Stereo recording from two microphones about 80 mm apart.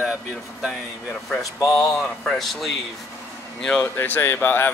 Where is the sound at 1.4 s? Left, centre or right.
Left.